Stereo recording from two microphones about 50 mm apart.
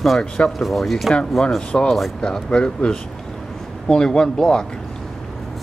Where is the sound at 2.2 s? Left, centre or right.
Centre.